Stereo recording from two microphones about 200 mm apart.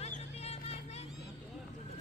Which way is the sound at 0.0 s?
30° left (ahead or behind).